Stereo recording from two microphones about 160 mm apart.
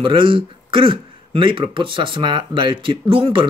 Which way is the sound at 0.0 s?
30° right (ahead or behind).